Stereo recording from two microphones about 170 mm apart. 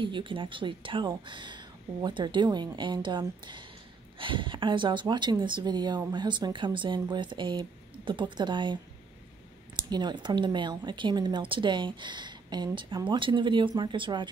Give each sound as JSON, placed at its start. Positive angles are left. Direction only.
{"t": 0.0, "sound": "speech", "side_deg": -30}
{"t": 9.8, "sound": "speech", "side_deg": -25}